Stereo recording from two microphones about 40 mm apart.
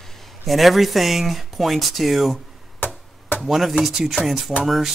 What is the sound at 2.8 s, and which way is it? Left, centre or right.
Chopping, left.